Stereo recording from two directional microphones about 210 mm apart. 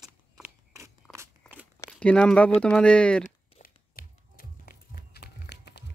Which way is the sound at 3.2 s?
40° left (ahead or behind).